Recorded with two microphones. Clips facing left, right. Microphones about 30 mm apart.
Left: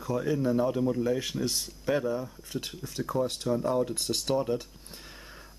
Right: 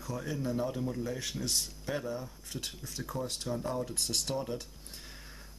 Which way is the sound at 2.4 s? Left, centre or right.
Centre.